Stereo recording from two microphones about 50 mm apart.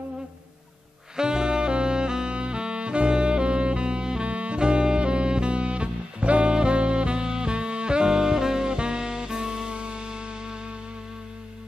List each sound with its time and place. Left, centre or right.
1.1 s saxophone: centre